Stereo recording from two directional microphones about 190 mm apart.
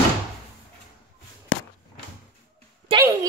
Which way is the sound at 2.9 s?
25° right (ahead or behind).